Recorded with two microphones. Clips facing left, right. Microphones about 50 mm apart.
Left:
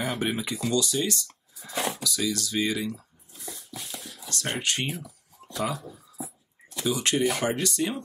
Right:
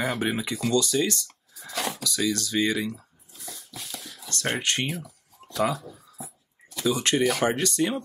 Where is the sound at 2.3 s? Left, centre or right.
Right.